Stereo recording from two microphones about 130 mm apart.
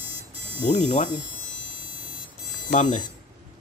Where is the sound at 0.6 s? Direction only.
60° left (ahead or behind).